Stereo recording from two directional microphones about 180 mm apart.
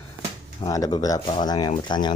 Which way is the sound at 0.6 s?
20° left (ahead or behind).